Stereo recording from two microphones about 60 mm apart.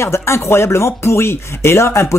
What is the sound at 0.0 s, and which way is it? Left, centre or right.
Speech, left.